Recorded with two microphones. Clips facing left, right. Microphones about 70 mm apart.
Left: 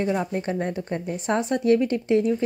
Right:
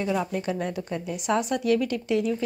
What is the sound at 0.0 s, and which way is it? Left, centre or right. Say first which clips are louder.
Speech: left 2 dB; left.